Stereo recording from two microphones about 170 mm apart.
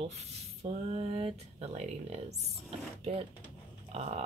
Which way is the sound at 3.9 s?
40° right (ahead or behind).